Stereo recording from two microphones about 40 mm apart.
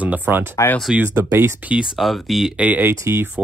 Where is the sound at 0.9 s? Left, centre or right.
Centre.